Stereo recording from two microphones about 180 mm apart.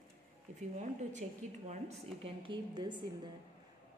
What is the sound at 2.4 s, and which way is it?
Speech, 25° right (ahead or behind).